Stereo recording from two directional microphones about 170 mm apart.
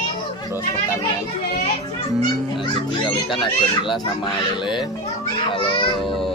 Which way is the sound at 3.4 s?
30° left (ahead or behind).